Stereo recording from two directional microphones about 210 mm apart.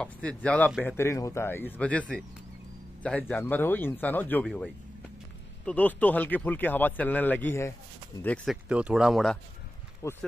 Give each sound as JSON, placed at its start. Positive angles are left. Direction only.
{"t": 0.0, "sound": "speech", "side_deg": 5}
{"t": 5.7, "sound": "speech", "side_deg": 5}
{"t": 8.6, "sound": "speech", "side_deg": -5}
{"t": 10.0, "sound": "speech", "side_deg": 15}